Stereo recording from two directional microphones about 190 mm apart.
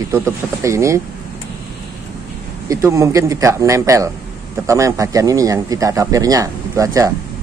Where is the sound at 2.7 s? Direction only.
15° right (ahead or behind).